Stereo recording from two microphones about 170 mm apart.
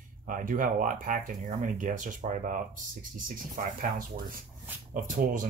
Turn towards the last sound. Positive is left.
turn(degrees=-50)  # may be behind; listen again after turning